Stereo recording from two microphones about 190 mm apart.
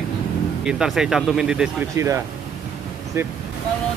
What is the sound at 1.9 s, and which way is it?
Speech, 15° right (ahead or behind).